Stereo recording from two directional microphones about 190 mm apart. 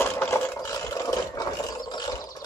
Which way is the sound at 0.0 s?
10° left (ahead or behind).